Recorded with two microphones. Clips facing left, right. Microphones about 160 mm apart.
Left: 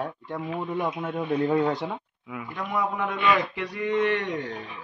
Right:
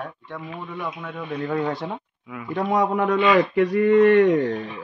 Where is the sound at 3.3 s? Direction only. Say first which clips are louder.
Right 10 dB; 45° right (ahead or behind).